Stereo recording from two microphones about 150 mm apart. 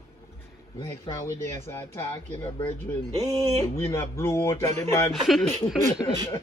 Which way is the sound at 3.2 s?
45° right (ahead or behind).